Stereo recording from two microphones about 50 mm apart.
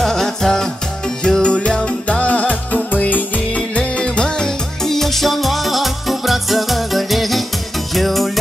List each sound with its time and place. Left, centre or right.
0.0 s music: centre
4.8 s music: centre